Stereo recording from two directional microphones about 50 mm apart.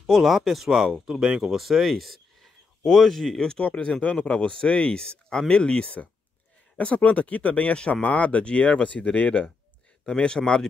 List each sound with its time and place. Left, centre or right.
0.0 s speech: centre
1.6 s speech: centre; by 9.5 s left
10.0 s speech: centre